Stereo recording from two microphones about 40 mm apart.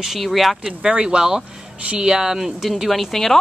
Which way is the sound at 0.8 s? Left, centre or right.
Centre.